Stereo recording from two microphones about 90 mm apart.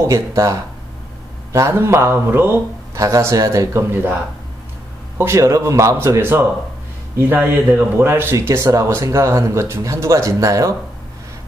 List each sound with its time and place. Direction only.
0.0 s a man's voice: 35° right (ahead or behind)